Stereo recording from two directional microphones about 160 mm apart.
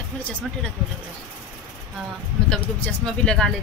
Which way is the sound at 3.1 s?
5° left (ahead or behind).